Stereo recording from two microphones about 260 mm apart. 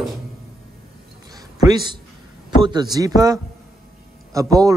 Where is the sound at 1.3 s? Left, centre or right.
Centre.